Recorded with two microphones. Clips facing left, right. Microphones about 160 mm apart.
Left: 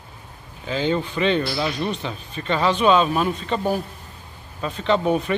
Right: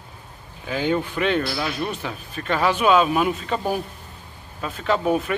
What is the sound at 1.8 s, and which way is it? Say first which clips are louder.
A man's voice: left 1 dB; 5° right (ahead or behind).